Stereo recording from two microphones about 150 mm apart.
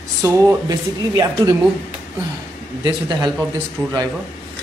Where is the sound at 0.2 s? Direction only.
20° right (ahead or behind).